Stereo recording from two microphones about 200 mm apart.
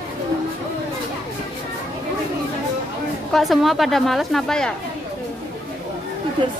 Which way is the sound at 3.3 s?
Centre (ahead or behind).